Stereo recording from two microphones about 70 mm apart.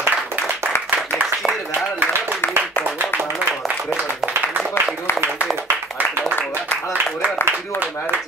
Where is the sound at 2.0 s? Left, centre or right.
Right.